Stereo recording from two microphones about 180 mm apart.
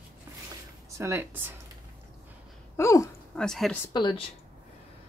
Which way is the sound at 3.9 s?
25° left (ahead or behind).